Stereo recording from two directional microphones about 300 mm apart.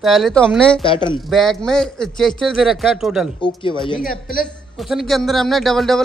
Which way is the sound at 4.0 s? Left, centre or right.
Left.